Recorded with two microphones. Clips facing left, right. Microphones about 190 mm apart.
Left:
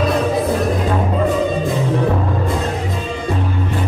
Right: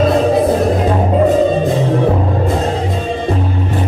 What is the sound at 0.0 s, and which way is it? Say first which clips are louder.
Music: right 5 dB; 25° right (ahead or behind).